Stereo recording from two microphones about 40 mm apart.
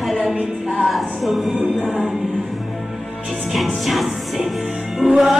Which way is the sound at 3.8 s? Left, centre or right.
Centre.